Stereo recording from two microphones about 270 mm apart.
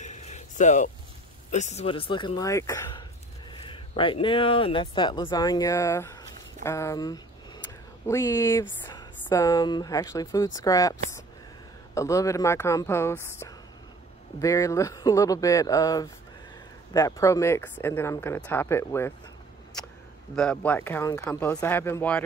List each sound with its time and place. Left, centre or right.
0.0 s a sound: left
1.5 s speech: left; by 19.1 s centre
20.3 s speech: centre